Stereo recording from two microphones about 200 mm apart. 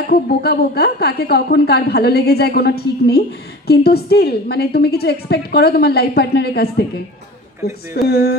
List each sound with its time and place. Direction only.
0.0 s a woman's voice: 50° left (ahead or behind)